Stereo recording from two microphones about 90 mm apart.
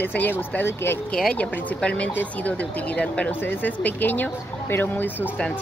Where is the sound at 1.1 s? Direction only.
10° left (ahead or behind).